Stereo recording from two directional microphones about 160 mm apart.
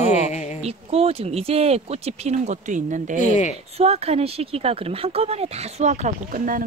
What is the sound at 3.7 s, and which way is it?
Speech, 40° right (ahead or behind).